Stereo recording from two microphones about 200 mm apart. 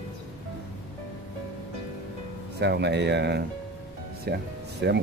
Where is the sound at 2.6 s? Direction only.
60° right (ahead or behind).